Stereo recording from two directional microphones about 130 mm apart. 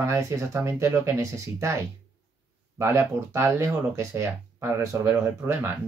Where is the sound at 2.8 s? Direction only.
25° right (ahead or behind).